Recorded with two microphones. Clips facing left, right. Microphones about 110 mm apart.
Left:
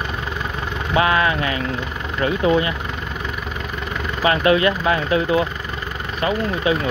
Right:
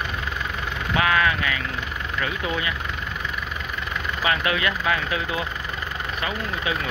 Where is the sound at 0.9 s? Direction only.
30° left (ahead or behind).